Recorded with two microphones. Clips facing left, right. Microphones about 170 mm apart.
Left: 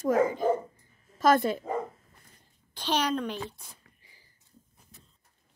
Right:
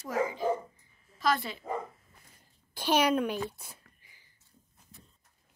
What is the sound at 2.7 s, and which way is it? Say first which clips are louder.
Speech: right 2 dB; 10° right (ahead or behind).